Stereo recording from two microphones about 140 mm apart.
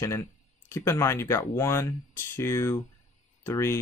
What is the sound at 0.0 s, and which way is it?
Speech, 20° left (ahead or behind).